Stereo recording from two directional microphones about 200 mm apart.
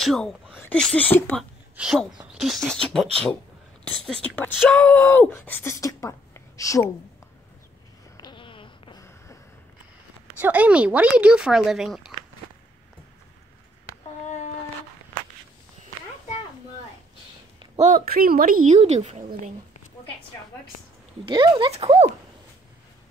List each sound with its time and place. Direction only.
0.0 s speech: centre (ahead or behind)
1.8 s speech: centre (ahead or behind); by 6.9 s 15° left (ahead or behind)
8.2 s a sound: 25° left (ahead or behind)
10.4 s speech: 5° right (ahead or behind)
17.7 s speech: 35° right (ahead or behind)
18.0 s a woman's voice: 50° right (ahead or behind)
18.7 s speech: 30° right (ahead or behind)
21.3 s speech: 25° right (ahead or behind)